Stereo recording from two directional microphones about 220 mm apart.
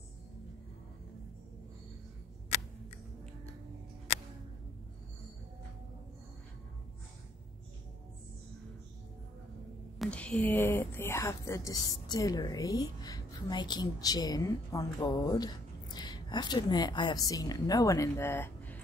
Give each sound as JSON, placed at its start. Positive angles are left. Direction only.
{"t": 9.9, "sound": "speech", "side_deg": 5}